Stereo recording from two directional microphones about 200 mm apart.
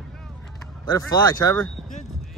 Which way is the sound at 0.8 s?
20° left (ahead or behind).